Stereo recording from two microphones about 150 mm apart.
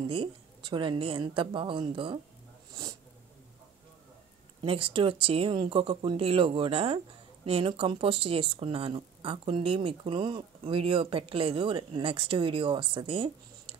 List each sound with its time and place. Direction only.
0.0 s speech: 35° right (ahead or behind)
4.6 s speech: 35° right (ahead or behind)